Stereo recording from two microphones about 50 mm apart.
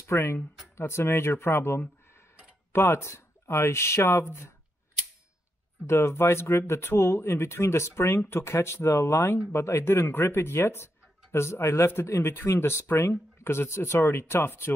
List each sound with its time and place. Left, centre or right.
0.1 s speech: left
5.9 s speech: left
12.2 s speech: left